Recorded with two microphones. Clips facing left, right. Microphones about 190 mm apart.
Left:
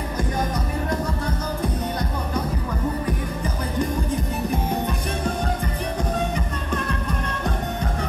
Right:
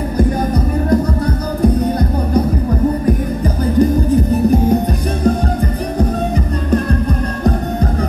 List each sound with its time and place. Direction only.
0.8 s music: 35° right (ahead or behind)
3.7 s music: 35° right (ahead or behind)
5.9 s music: 35° right (ahead or behind)